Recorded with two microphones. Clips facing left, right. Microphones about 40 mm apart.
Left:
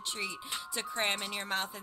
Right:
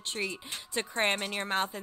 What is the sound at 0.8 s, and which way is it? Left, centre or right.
Speech, right.